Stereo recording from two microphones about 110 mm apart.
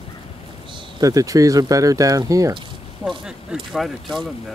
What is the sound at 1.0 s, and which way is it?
Speech, 30° right (ahead or behind).